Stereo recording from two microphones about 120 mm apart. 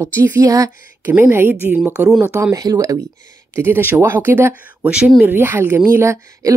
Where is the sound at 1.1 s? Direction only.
15° right (ahead or behind).